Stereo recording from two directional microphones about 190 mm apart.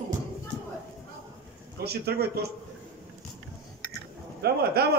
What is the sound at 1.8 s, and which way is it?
Speech, 55° right (ahead or behind).